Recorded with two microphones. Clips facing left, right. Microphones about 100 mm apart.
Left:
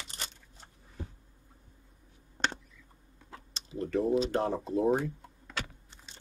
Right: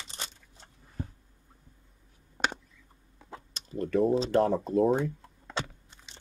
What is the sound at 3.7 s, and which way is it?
Speech, 50° right (ahead or behind).